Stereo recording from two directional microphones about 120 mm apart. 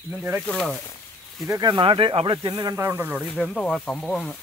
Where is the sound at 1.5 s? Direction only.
30° right (ahead or behind).